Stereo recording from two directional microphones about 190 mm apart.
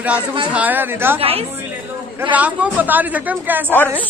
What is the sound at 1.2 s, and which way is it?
Speech, 30° right (ahead or behind).